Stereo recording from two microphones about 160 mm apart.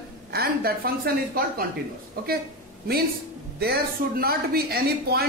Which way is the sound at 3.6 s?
75° right (ahead or behind).